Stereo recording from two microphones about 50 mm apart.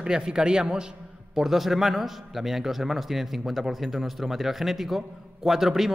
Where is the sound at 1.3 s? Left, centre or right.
Centre.